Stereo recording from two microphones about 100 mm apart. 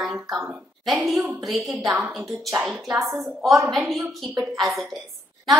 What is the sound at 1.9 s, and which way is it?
Speech, 15° right (ahead or behind).